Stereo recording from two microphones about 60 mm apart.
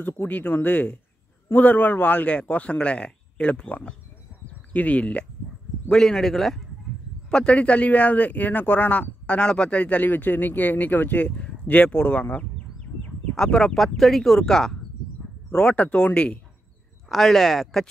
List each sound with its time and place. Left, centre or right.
0.0 s speech: left
5.9 s speech: centre
7.2 s speech: centre
15.5 s speech: centre
17.1 s speech: centre